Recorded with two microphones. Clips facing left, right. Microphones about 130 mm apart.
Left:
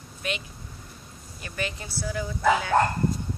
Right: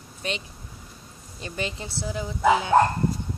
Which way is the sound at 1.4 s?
20° right (ahead or behind).